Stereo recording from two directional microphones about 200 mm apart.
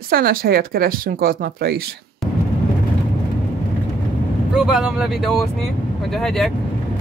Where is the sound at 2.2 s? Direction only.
Centre (ahead or behind).